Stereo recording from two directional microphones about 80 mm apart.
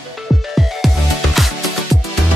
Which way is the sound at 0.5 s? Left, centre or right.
Centre.